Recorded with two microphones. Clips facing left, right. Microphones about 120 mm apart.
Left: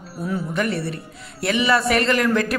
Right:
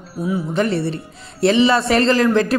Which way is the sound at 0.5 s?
30° right (ahead or behind).